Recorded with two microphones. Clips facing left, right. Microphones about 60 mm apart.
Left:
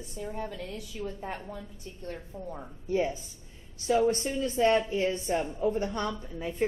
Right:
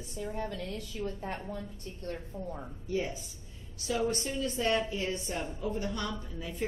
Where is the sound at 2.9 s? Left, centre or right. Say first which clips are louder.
Left 5 dB; left.